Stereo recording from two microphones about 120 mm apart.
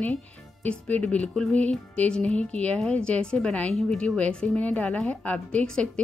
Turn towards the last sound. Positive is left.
turn(degrees=5)  # may be behind; listen again after turning